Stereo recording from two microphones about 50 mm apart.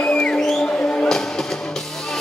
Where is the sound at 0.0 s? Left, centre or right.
Left.